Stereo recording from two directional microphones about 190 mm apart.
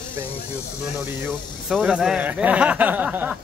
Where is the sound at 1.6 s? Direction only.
Centre (ahead or behind).